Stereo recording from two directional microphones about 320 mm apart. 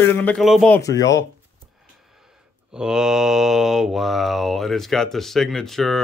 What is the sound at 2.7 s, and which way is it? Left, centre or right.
Speech, centre.